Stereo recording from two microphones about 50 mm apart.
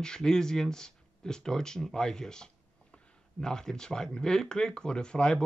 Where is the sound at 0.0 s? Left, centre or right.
Centre.